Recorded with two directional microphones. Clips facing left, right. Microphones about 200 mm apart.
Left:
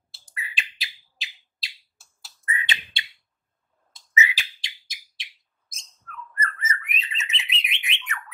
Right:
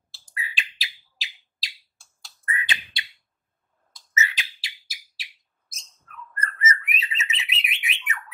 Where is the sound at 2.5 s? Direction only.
25° left (ahead or behind).